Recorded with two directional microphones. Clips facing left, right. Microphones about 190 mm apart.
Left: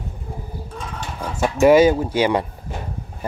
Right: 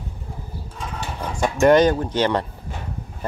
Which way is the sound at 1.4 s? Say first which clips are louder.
Left 2 dB; 5° left (ahead or behind).